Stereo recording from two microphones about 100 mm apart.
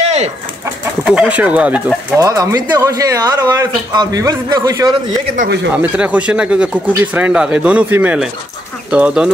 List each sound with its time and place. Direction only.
0.0 s chicken: 90° right
1.0 s speech: 10° right (ahead or behind)
2.1 s a man's voice: 35° right (ahead or behind)
5.8 s speech: 15° right (ahead or behind)